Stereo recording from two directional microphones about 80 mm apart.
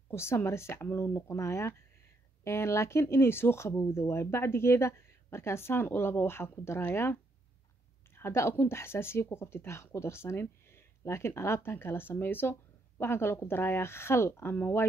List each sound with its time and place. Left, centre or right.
0.1 s speech: left